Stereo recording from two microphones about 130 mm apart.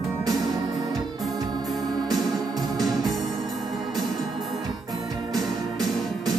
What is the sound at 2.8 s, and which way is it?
Music, centre (ahead or behind).